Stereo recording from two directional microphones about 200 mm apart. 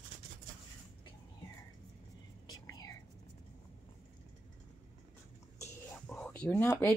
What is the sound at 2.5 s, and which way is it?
Whispering, 20° left (ahead or behind).